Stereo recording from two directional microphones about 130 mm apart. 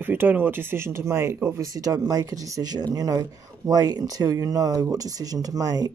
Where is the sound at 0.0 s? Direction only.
15° right (ahead or behind).